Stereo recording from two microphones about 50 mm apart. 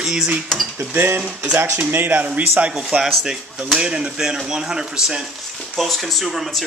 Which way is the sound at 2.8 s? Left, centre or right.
Centre.